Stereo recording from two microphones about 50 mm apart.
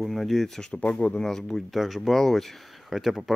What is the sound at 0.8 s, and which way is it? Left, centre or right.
Speech, left.